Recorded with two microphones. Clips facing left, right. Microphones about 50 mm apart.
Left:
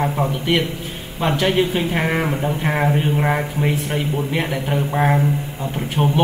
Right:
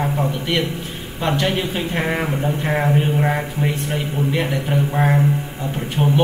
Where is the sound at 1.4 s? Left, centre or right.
Centre.